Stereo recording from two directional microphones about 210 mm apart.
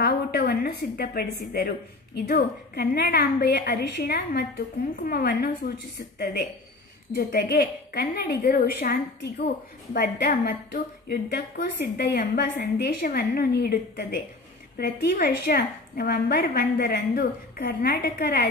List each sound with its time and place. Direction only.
0.0 s a woman's voice: 50° left (ahead or behind)